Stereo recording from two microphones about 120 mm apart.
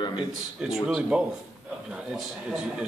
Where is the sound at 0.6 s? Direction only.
5° right (ahead or behind).